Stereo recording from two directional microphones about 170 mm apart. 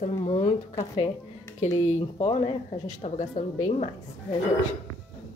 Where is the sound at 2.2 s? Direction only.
35° left (ahead or behind).